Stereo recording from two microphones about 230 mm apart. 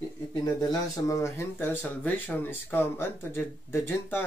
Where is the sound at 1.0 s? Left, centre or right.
Centre.